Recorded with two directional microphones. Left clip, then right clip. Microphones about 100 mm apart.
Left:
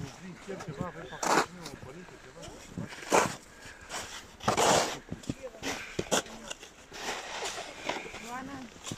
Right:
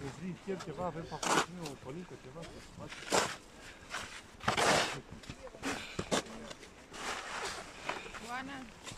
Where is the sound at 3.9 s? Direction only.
35° left (ahead or behind).